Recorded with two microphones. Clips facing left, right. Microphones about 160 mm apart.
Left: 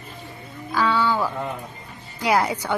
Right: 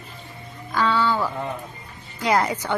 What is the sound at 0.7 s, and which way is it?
A woman's voice, 10° left (ahead or behind).